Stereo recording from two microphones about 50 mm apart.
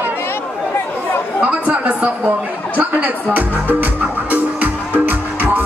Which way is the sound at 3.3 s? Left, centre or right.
Right.